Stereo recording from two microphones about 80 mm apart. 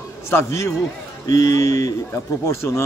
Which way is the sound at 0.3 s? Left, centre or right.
Left.